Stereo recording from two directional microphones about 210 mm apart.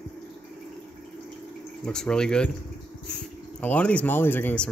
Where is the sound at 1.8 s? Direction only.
5° left (ahead or behind).